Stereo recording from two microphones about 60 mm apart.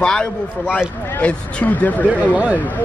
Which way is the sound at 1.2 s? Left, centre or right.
Left.